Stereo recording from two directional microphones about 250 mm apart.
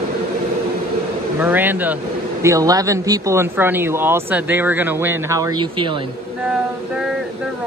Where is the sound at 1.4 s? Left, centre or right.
Centre.